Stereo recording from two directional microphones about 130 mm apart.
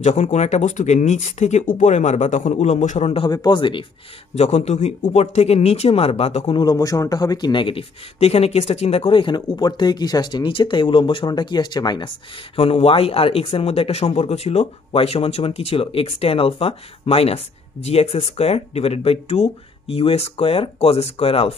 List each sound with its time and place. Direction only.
0.0 s speech: 65° left (ahead or behind)
3.3 s speech: 35° left (ahead or behind)
4.4 s speech: 60° left (ahead or behind)
6.6 s speech: 30° left (ahead or behind)
12.5 s speech: 50° left (ahead or behind)